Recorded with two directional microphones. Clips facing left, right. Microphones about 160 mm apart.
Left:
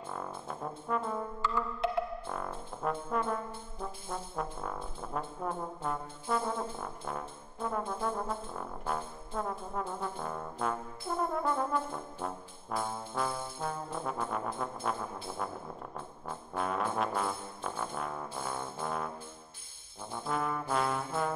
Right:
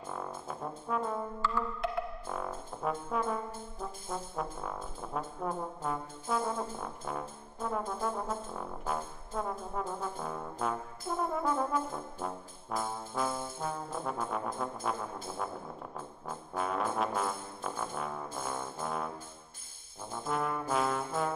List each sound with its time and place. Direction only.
0.5 s trombone: centre (ahead or behind)
2.2 s trombone: centre (ahead or behind)
5.0 s brass instrument: centre (ahead or behind)
16.3 s trombone: centre (ahead or behind)
20.1 s trombone: centre (ahead or behind)